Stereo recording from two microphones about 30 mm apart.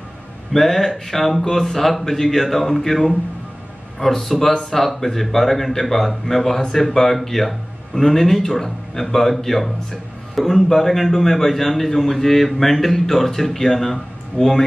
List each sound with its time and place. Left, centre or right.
0.5 s speech: centre
14.4 s speech: left